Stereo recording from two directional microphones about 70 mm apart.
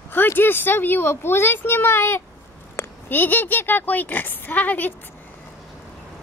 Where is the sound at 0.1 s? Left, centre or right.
Left.